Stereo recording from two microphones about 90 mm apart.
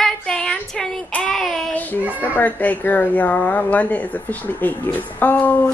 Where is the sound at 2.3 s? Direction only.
20° left (ahead or behind).